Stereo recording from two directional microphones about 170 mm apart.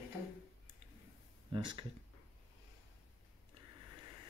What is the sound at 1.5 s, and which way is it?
Speech, 30° right (ahead or behind).